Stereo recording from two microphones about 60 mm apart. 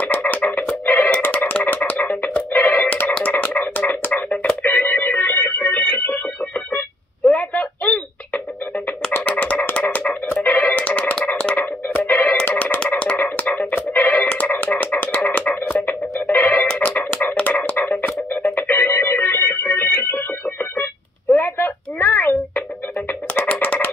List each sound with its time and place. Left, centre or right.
0.0 s music: left
4.6 s organ: left
7.2 s music: left
11.2 s a sound: left
12.1 s music: left
17.4 s a sound: left
18.4 s organ: left
21.3 s music: left
23.4 s a sound: left